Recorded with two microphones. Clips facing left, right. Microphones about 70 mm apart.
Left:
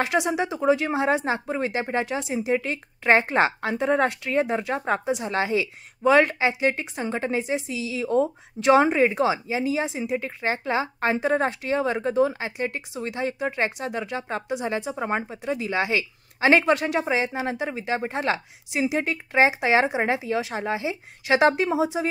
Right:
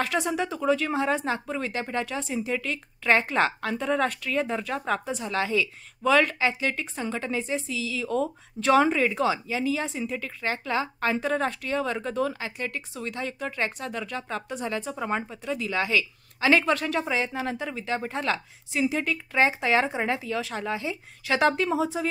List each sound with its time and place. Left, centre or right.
0.0 s speech: centre